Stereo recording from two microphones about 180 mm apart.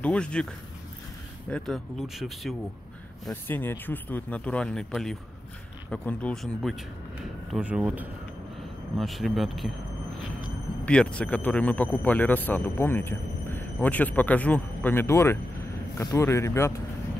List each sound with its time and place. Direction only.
0.0 s speech: 5° left (ahead or behind)
1.5 s speech: centre (ahead or behind)
3.3 s a man's voice: 10° left (ahead or behind)
10.9 s a man's voice: 5° left (ahead or behind)